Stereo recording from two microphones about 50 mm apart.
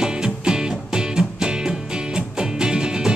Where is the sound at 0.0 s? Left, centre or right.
Centre.